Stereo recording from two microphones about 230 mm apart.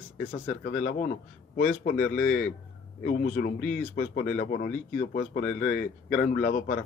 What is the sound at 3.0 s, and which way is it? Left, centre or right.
Speech, left.